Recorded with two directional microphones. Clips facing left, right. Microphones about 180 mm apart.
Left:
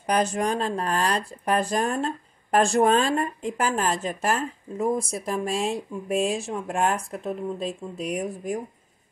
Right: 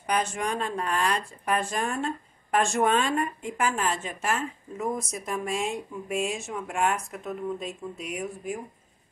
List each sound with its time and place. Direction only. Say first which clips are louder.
0.0 s speech: left 4 dB; 35° left (ahead or behind)